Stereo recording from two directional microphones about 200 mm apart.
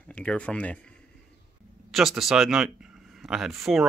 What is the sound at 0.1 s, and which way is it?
Speech, 5° left (ahead or behind).